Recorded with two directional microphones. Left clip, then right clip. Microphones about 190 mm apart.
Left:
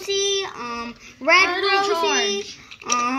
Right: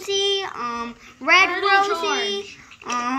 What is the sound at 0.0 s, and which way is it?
Child singing, 5° right (ahead or behind).